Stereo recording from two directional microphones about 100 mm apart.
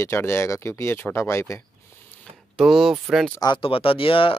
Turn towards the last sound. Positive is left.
turn(degrees=65)  # may be behind; listen again after turning